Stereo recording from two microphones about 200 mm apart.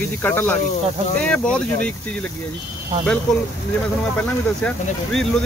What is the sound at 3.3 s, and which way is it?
Speech, centre (ahead or behind).